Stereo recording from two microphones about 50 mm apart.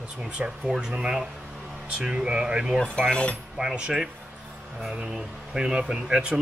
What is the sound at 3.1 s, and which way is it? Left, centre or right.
Speech, left.